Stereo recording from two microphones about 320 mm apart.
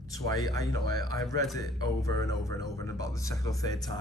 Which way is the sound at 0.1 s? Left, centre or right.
Centre.